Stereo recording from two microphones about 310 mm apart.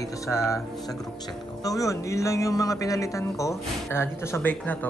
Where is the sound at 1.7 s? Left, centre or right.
Centre.